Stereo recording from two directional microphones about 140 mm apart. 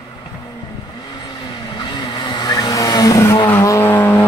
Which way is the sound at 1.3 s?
30° left (ahead or behind).